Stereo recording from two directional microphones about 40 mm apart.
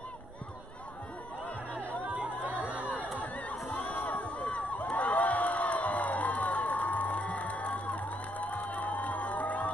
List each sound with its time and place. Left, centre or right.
2.0 s chatter: right
3.2 s chatter: left
3.7 s crowd: left